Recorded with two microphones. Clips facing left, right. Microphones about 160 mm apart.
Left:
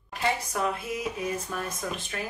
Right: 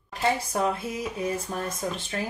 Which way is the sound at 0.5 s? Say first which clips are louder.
Right 3 dB; 35° right (ahead or behind).